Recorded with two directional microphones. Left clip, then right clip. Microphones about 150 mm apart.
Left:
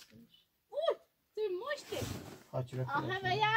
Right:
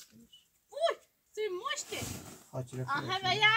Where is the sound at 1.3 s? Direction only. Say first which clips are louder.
Right 1 dB; 35° right (ahead or behind).